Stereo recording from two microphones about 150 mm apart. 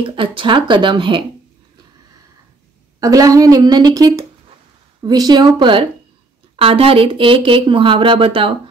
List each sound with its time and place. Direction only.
0.0 s speech: 35° right (ahead or behind)
3.0 s a woman's voice: 25° right (ahead or behind)